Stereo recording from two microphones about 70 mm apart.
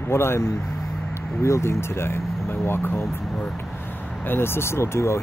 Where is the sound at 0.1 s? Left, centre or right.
Left.